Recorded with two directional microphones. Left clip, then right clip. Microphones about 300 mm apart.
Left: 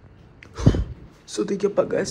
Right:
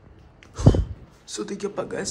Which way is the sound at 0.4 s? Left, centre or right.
Centre.